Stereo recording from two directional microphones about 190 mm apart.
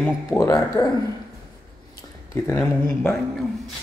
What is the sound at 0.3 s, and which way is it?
Speech, 15° left (ahead or behind).